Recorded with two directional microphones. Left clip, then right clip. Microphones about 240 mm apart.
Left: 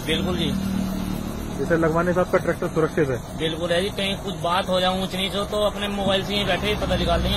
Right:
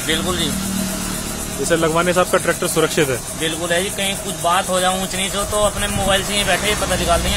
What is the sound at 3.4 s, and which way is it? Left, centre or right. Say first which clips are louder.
Speech: right 3 dB; centre.